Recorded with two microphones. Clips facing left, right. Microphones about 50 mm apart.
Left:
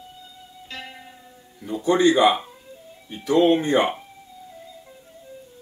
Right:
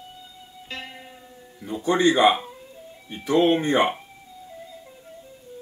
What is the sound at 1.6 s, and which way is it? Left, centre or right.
Speech, right.